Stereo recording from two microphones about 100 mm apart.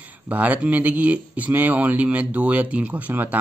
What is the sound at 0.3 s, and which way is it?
Speech, 15° right (ahead or behind).